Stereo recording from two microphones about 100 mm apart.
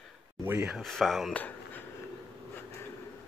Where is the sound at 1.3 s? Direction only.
15° left (ahead or behind).